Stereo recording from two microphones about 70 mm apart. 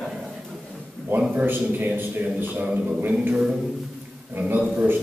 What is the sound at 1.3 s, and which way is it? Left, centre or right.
A man's voice, right.